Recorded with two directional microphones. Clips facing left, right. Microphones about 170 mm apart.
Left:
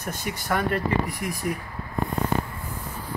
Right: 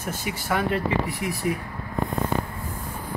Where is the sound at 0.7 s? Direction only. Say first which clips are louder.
Even; 45° left (ahead or behind).